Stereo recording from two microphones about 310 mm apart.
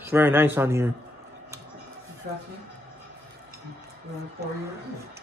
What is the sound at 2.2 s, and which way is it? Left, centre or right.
Speech, right.